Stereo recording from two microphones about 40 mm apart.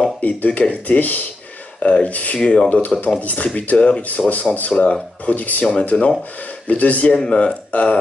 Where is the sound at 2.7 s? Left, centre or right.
Left.